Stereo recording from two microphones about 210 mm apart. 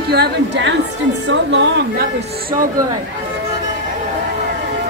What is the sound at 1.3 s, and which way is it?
Music, 60° right (ahead or behind).